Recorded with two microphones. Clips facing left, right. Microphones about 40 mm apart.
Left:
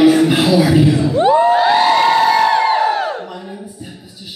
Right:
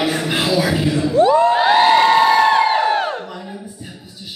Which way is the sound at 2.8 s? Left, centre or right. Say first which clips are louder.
Left 1 dB; right.